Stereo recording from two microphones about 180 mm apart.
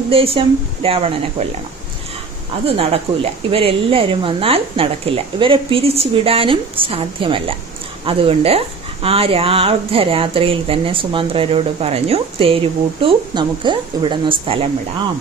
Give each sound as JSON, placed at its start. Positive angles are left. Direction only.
{"t": 0.1, "sound": "speech", "side_deg": -30}
{"t": 2.6, "sound": "speech", "side_deg": -30}